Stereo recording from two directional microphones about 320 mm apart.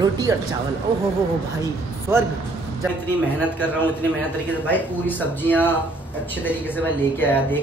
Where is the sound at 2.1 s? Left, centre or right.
Centre.